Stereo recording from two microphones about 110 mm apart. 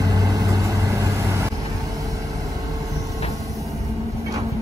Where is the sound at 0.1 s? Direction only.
30° right (ahead or behind).